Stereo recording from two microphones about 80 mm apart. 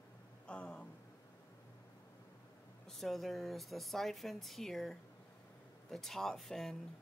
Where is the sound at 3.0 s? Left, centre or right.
Centre.